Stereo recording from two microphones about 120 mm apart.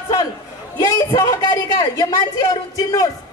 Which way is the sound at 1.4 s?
40° left (ahead or behind).